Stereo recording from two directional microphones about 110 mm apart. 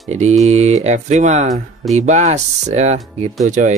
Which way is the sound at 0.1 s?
90° right.